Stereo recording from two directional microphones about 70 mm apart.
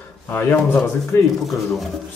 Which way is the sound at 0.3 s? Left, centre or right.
Left.